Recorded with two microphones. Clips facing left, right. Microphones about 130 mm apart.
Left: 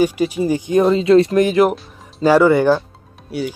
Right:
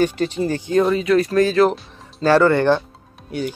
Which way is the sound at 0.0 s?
10° left (ahead or behind).